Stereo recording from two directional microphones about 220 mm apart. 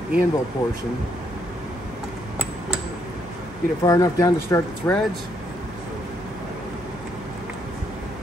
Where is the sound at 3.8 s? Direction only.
15° left (ahead or behind).